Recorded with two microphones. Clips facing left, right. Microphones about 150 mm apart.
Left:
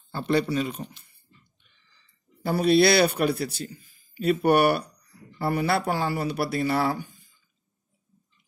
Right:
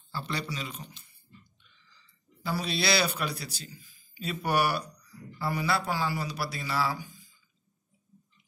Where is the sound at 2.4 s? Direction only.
55° left (ahead or behind).